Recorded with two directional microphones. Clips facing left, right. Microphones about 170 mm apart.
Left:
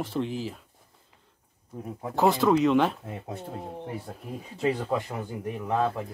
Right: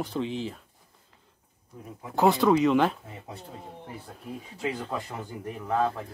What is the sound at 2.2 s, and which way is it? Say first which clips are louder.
Speech: right 1 dB; centre (ahead or behind).